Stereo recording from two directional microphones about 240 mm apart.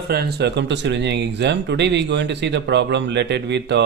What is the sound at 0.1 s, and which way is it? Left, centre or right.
Speech, right.